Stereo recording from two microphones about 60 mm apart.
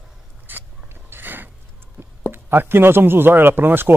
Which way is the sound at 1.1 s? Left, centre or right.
Right.